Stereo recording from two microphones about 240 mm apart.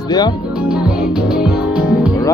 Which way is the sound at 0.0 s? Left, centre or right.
Centre.